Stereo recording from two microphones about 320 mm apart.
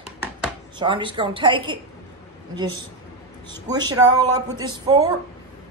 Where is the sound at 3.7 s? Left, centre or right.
Centre.